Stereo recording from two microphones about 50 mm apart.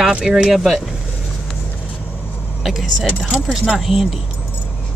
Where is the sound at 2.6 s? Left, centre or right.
Centre.